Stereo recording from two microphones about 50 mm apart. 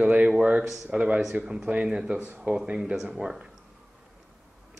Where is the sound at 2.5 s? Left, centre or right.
Centre.